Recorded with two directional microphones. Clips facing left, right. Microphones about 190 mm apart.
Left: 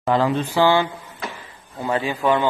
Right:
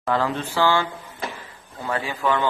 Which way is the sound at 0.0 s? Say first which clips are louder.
Left 4 dB; 20° left (ahead or behind).